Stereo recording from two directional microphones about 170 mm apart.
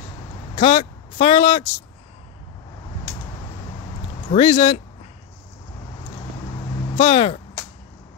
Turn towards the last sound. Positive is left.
turn(degrees=35)  # may be behind; listen again after turning